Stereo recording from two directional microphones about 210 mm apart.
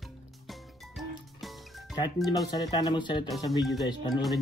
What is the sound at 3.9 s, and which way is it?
Speech, 20° left (ahead or behind).